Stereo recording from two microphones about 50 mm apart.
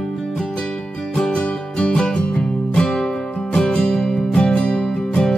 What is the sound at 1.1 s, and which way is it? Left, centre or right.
Music, centre.